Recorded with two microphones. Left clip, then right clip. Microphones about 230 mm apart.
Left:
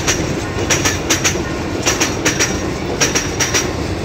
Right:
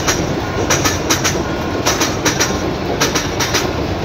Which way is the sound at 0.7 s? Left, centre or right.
Right.